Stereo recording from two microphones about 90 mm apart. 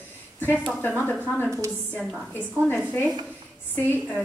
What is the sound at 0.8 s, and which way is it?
Speech, 20° left (ahead or behind).